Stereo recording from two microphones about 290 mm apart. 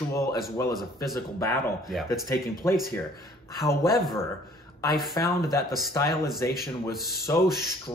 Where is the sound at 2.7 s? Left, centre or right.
Centre.